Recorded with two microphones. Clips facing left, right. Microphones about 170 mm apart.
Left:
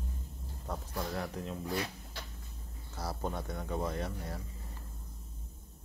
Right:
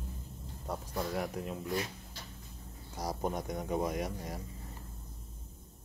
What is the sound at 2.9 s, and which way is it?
Speech, 15° right (ahead or behind).